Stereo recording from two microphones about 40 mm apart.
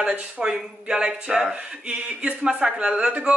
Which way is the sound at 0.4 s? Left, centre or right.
Centre.